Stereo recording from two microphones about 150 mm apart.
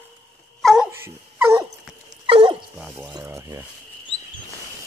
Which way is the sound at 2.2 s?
35° right (ahead or behind).